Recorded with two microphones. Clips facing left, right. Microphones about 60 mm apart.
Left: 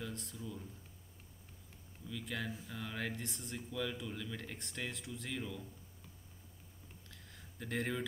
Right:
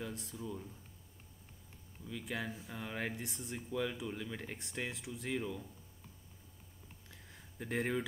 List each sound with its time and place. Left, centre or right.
0.0 s speech: centre
2.0 s speech: centre
7.1 s a sound: centre